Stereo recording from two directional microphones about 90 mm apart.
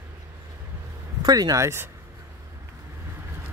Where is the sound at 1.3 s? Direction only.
45° right (ahead or behind).